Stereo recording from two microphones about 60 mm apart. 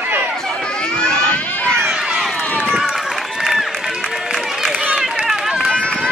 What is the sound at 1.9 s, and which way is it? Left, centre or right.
Run, centre.